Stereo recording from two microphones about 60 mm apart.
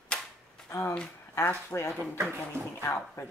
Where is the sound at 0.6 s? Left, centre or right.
Left.